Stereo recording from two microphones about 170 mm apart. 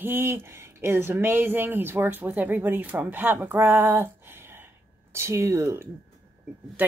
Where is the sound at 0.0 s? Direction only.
15° right (ahead or behind).